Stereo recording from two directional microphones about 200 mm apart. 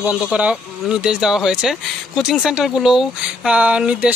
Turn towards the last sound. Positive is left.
turn(degrees=-5)  # may be behind; listen again after turning